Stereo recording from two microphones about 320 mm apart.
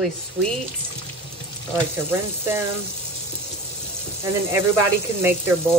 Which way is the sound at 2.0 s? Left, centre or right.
Centre.